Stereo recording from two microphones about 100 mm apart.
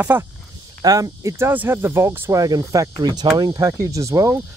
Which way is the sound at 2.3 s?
35° right (ahead or behind).